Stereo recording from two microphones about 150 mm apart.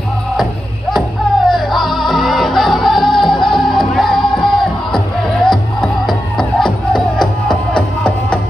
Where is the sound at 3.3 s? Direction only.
30° left (ahead or behind).